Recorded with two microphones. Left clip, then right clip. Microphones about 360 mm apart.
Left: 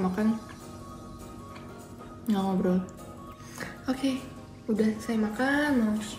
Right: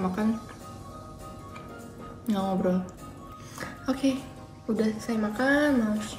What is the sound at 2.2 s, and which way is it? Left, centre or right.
Speech, centre.